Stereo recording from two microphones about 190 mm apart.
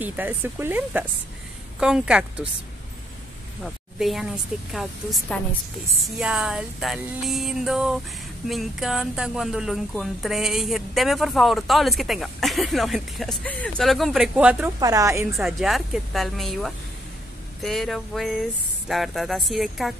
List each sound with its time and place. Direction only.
0.0 s speech: 10° right (ahead or behind)
3.6 s speech: centre (ahead or behind)
14.8 s speech: 20° right (ahead or behind)
15.3 s speech: centre (ahead or behind)